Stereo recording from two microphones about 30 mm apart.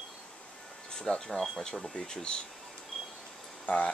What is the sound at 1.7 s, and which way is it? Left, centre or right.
Speech, centre.